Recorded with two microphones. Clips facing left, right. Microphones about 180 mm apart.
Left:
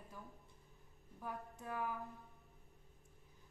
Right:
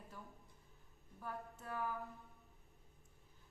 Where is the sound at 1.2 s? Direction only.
15° left (ahead or behind).